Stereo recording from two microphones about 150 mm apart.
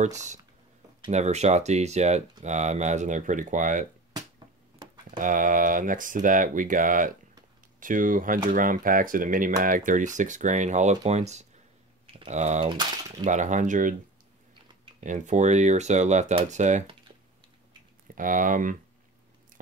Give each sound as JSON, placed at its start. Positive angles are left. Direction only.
{"t": 0.0, "sound": "speech", "side_deg": -50}
{"t": 5.1, "sound": "speech", "side_deg": -60}
{"t": 12.6, "sound": "speech", "side_deg": -30}
{"t": 13.2, "sound": "speech", "side_deg": -55}
{"t": 15.0, "sound": "speech", "side_deg": -55}
{"t": 18.1, "sound": "speech", "side_deg": -65}